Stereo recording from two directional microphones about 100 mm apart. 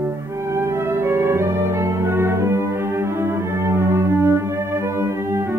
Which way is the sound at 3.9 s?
25° right (ahead or behind).